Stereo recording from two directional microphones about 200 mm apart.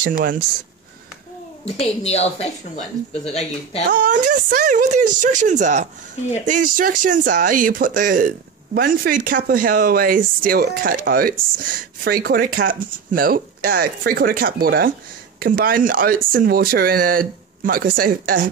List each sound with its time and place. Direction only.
0.0 s speech: 45° right (ahead or behind)
1.8 s a woman's voice: 30° left (ahead or behind)
3.9 s speech: 40° right (ahead or behind)